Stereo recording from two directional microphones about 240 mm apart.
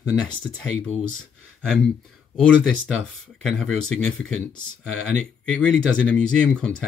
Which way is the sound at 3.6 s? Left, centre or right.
Centre.